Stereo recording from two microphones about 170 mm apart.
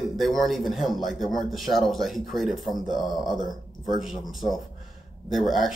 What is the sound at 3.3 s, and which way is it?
Speech, 25° right (ahead or behind).